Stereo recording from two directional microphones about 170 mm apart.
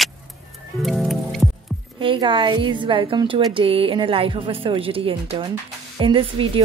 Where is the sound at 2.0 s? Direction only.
30° right (ahead or behind).